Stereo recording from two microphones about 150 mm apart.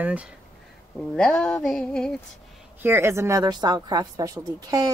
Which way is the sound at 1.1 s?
5° left (ahead or behind).